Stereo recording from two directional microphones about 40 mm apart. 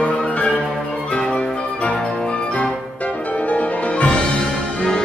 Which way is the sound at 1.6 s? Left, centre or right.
Left.